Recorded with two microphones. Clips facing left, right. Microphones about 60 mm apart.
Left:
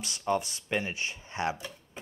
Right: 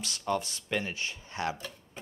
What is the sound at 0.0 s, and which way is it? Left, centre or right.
Speech, centre.